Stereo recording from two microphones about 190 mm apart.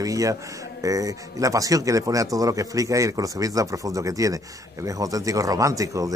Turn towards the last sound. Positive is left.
turn(degrees=-15)  # may be behind; listen again after turning